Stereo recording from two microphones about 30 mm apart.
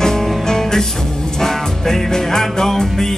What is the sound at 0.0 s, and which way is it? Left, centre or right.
Music, centre.